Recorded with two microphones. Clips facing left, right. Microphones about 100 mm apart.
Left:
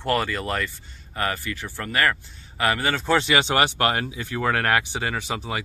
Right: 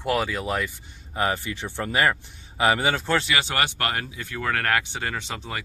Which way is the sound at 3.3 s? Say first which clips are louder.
Left 5 dB; 20° left (ahead or behind).